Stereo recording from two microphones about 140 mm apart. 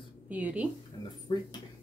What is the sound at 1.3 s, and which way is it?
Speech, 30° left (ahead or behind).